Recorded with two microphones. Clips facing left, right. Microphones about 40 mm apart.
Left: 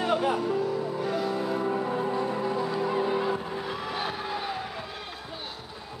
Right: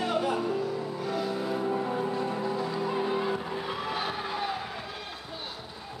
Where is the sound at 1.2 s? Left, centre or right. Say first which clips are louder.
Even; centre.